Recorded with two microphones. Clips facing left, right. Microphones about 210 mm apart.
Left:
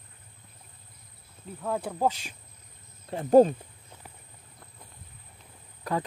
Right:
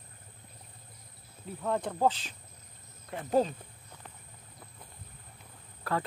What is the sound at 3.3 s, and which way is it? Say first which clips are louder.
Speech: left 10 dB; 45° left (ahead or behind).